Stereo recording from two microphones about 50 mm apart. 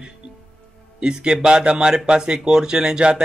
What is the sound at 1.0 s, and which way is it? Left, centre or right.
Speech, centre.